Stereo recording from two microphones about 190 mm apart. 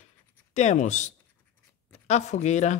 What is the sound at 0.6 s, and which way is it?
Speech, 35° left (ahead or behind).